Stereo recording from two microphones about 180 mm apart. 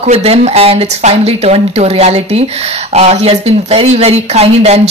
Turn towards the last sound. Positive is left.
turn(degrees=-35)  # may be behind; listen again after turning